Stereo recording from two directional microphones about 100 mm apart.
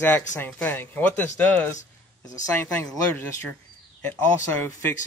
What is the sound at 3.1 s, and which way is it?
Speech, 20° left (ahead or behind).